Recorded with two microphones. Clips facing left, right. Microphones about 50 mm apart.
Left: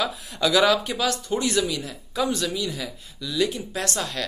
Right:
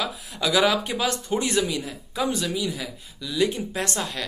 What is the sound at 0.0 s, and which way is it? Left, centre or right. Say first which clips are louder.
Speech: left 3 dB; centre.